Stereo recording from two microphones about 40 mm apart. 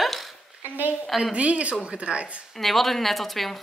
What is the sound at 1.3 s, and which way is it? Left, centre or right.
Speech, right.